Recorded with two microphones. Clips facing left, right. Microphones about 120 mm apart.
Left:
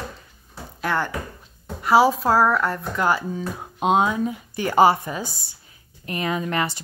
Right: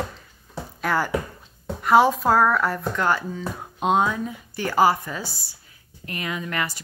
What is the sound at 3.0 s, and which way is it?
Speech, 15° left (ahead or behind).